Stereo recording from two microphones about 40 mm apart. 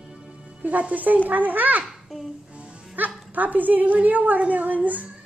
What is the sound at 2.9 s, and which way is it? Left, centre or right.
A woman's voice, right.